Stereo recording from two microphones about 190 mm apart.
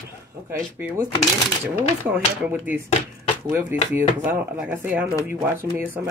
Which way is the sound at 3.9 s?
10° right (ahead or behind).